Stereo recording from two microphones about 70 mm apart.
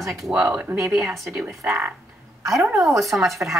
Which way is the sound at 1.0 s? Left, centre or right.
Centre.